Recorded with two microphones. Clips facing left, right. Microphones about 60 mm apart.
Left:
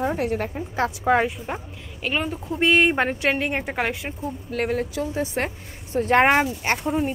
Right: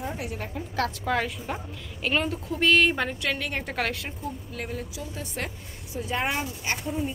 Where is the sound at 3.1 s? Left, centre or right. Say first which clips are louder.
Left 7 dB; left.